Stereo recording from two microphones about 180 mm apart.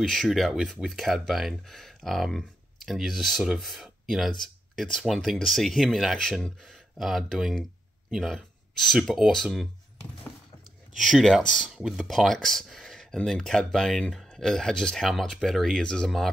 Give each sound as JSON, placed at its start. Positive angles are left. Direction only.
{"t": 0.0, "sound": "speech", "side_deg": 0}